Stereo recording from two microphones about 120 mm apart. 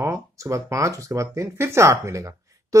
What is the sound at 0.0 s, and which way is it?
Speech, 25° right (ahead or behind).